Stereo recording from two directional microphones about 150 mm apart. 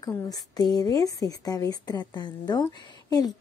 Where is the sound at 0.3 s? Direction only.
25° left (ahead or behind).